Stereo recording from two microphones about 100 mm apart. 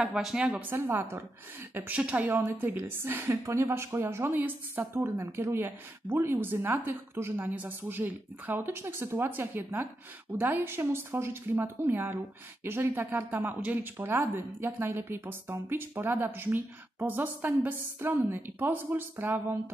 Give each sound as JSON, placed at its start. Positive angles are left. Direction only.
{"t": 0.0, "sound": "speech", "side_deg": -5}
{"t": 2.2, "sound": "a woman's voice", "side_deg": -25}
{"t": 13.9, "sound": "a woman's voice", "side_deg": -25}